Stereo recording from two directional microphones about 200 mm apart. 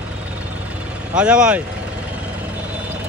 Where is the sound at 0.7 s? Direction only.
5° right (ahead or behind).